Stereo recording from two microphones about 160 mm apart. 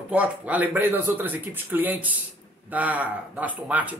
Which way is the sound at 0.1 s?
10° right (ahead or behind).